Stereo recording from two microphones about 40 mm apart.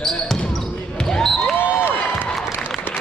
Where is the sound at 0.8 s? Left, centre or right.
Centre.